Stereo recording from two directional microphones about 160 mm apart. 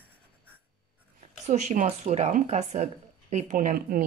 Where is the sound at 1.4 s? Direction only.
45° right (ahead or behind).